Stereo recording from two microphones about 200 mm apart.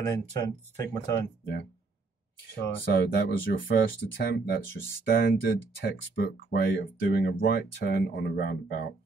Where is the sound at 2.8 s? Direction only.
55° left (ahead or behind).